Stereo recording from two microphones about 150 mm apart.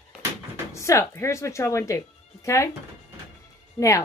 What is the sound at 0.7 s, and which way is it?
Speech, 20° left (ahead or behind).